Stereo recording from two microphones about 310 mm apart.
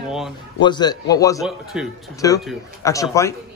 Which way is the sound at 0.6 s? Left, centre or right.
Centre.